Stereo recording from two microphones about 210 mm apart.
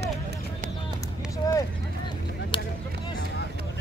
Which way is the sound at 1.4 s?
15° left (ahead or behind).